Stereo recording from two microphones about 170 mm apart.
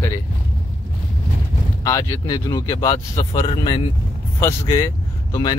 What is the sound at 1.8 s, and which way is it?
Speech, 20° left (ahead or behind).